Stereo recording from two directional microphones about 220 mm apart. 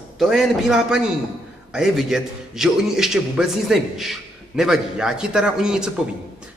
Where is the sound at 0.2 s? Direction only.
Centre (ahead or behind).